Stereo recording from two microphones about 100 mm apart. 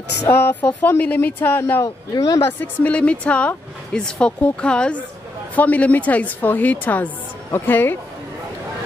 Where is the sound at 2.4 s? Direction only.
15° left (ahead or behind).